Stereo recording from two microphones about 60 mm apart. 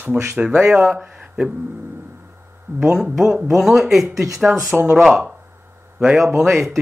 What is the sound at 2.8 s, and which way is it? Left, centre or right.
A man's voice, centre.